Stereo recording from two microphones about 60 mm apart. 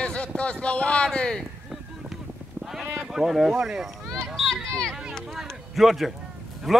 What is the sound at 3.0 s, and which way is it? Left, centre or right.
Speech, centre.